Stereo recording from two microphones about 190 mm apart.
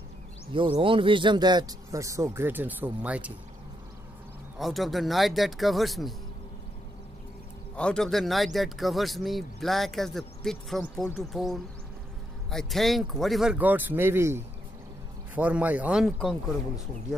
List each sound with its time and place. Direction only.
0.5 s speech: 25° right (ahead or behind); by 3.3 s 5° right (ahead or behind)
4.6 s speech: centre (ahead or behind)
7.7 s speech: 5° left (ahead or behind)